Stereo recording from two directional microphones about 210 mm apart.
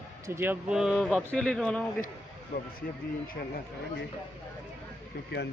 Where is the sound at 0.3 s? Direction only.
10° right (ahead or behind).